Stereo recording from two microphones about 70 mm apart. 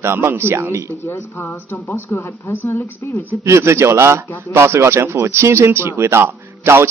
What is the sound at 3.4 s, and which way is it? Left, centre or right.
Speech, right.